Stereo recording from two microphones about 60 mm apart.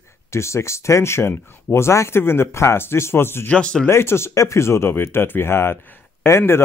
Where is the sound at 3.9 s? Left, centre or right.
Left.